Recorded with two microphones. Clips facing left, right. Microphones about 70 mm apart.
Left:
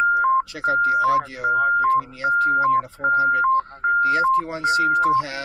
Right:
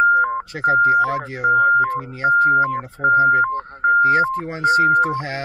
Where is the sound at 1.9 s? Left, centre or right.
Right.